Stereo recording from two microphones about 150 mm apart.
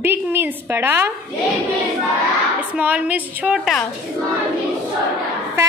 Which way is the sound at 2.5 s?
10° right (ahead or behind).